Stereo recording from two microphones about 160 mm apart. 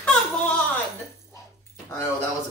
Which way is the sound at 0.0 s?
5° left (ahead or behind).